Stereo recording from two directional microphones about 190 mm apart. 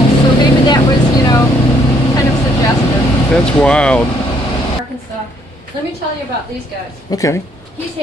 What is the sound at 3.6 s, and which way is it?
Speech, 5° left (ahead or behind).